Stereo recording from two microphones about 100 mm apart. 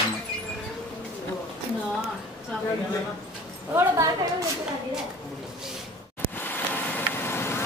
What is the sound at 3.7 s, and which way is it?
Speech, 30° right (ahead or behind).